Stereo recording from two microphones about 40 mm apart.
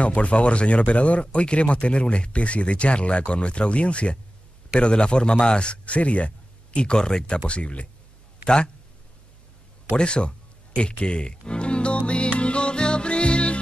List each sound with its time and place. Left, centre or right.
0.0 s a man's voice: left
9.9 s a man's voice: left
10.8 s music: left